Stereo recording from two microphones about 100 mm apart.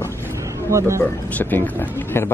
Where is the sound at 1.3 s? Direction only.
20° left (ahead or behind).